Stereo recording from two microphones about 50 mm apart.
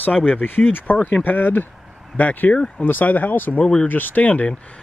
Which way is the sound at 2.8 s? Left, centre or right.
Left.